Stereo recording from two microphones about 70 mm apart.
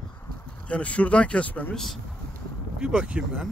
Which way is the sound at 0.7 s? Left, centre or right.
Centre.